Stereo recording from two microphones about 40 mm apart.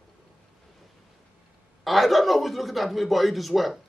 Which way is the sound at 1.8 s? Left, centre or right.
Centre.